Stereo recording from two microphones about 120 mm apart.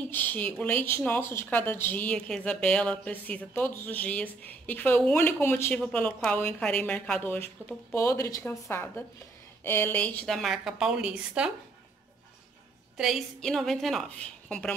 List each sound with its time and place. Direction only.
0.1 s a woman's voice: 15° left (ahead or behind)
10.2 s a woman's voice: centre (ahead or behind)
12.9 s a woman's voice: 5° right (ahead or behind)